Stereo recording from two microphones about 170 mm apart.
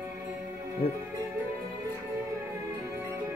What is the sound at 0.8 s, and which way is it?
Speech, 35° left (ahead or behind).